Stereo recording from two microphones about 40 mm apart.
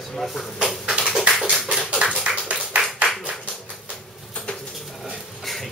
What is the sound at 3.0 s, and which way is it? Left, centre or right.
Clapping, right.